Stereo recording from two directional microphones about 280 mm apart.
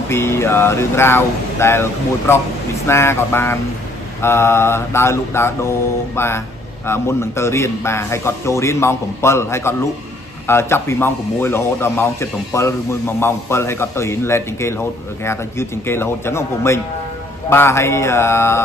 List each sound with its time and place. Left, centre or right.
0.1 s speech: centre